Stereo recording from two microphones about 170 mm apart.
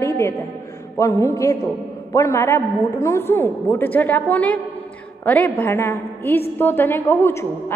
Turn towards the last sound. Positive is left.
turn(degrees=15)  # may be behind; listen again after turning